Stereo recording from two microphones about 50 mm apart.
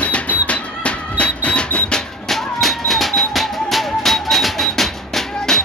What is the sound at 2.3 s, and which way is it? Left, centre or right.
Music, centre.